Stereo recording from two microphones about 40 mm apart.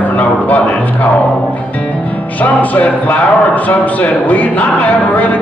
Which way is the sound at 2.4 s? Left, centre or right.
Left.